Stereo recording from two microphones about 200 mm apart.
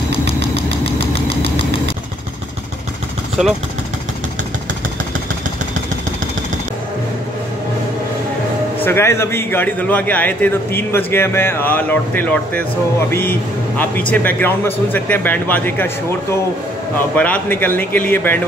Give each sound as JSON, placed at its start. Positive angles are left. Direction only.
{"t": 8.8, "sound": "a man's voice", "side_deg": 10}
{"t": 17.1, "sound": "a man's voice", "side_deg": 5}